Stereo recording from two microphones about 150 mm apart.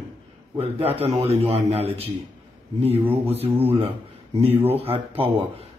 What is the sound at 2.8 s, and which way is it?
Speech, 10° right (ahead or behind).